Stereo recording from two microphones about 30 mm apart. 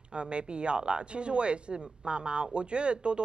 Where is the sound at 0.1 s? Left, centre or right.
Right.